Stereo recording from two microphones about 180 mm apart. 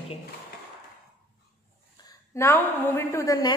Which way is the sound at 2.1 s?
15° left (ahead or behind).